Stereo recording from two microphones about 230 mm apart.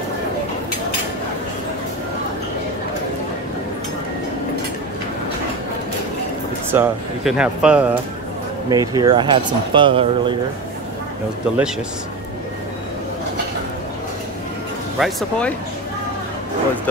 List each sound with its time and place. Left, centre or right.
6.7 s speech: centre
8.6 s speech: centre
11.5 s speech: centre
15.0 s speech: centre